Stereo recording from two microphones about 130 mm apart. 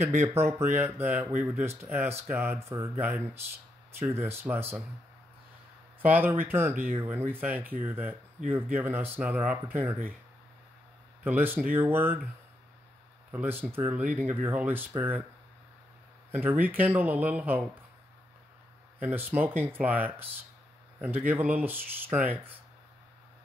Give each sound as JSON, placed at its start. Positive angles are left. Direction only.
{"t": 0.0, "sound": "speech", "side_deg": -20}
{"t": 6.0, "sound": "speech", "side_deg": -15}
{"t": 11.2, "sound": "speech", "side_deg": -15}
{"t": 13.3, "sound": "speech", "side_deg": -15}
{"t": 16.3, "sound": "speech", "side_deg": -15}
{"t": 18.9, "sound": "speech", "side_deg": -15}
{"t": 21.3, "sound": "speech", "side_deg": -15}